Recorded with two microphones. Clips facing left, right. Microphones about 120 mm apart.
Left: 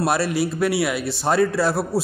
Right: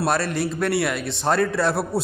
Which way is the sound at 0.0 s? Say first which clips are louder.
Left 2 dB; 10° left (ahead or behind).